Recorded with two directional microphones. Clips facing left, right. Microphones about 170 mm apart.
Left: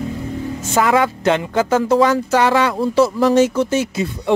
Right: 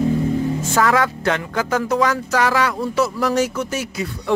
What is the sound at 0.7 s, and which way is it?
Speech, 20° left (ahead or behind).